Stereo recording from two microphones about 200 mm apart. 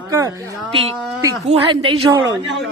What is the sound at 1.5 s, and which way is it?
Speech, 30° right (ahead or behind).